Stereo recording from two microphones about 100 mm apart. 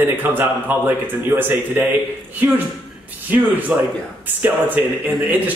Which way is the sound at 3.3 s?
20° right (ahead or behind).